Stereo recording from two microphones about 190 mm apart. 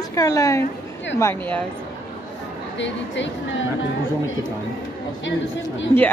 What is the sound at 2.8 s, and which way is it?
Speech, 75° left (ahead or behind).